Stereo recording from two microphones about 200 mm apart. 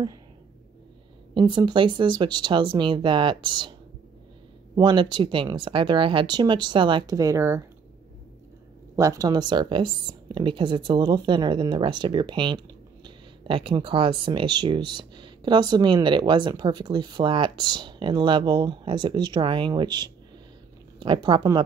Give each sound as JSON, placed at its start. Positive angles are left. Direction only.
{"t": 1.3, "sound": "speech", "side_deg": -20}
{"t": 4.7, "sound": "speech", "side_deg": -20}
{"t": 8.9, "sound": "speech", "side_deg": -15}